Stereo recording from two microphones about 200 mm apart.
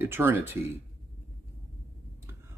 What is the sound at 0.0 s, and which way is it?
Speech, 10° right (ahead or behind).